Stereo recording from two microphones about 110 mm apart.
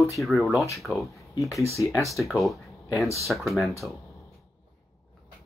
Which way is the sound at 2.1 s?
Centre (ahead or behind).